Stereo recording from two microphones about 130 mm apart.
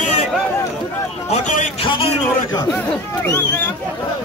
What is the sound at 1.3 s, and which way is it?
Speech, 70° left (ahead or behind).